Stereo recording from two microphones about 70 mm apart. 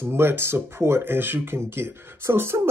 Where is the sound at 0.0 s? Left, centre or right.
Right.